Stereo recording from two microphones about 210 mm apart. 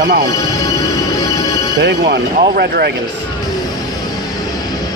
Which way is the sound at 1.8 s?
55° right (ahead or behind).